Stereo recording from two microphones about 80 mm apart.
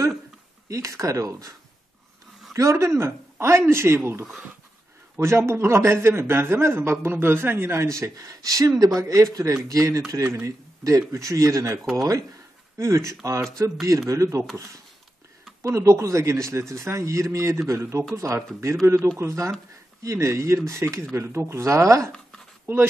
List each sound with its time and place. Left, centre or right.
0.7 s speech: right
2.5 s a man's voice: right
15.6 s a man's voice: right